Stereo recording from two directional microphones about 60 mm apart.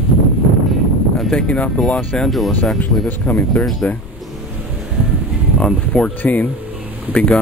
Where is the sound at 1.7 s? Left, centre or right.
Centre.